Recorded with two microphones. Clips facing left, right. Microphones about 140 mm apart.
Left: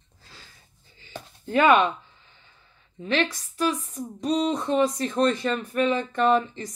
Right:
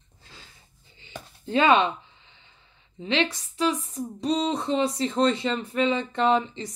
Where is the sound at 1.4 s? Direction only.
25° right (ahead or behind).